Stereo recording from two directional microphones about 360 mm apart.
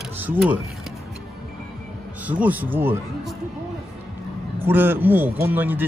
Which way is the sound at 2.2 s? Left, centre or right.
Centre.